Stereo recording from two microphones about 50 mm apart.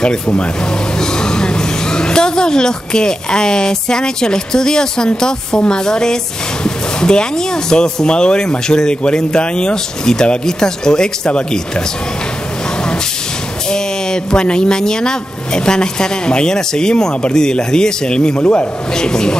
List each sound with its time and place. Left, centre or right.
0.9 s speech: centre
13.7 s speech: centre
18.9 s speech: centre